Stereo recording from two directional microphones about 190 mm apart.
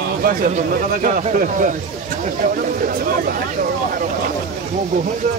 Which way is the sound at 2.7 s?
50° right (ahead or behind).